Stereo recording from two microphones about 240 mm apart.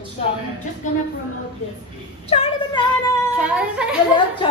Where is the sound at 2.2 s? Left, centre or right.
Left.